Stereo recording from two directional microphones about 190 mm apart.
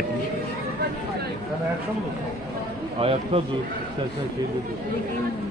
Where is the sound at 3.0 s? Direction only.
30° right (ahead or behind).